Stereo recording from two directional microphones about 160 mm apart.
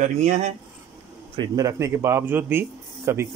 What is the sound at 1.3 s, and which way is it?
Speech, 25° right (ahead or behind).